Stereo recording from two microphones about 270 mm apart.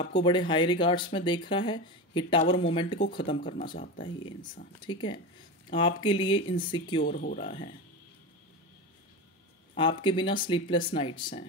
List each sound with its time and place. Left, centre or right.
0.0 s speech: centre
3.6 s speech: left
4.8 s speech: centre
7.1 s speech: left
9.8 s speech: centre